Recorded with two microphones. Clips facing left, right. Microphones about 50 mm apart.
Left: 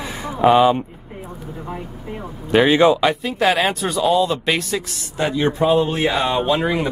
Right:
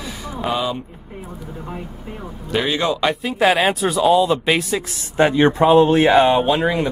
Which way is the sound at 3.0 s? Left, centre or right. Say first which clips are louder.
Right 1 dB; centre.